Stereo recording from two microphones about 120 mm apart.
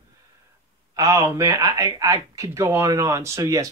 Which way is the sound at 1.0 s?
25° right (ahead or behind).